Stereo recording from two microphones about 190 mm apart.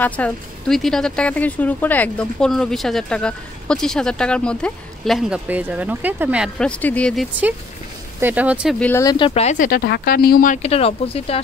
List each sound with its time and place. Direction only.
0.0 s speech: 5° left (ahead or behind)
8.2 s speech: 10° right (ahead or behind)
8.7 s speech: 10° left (ahead or behind)
9.0 s speech: 25° left (ahead or behind)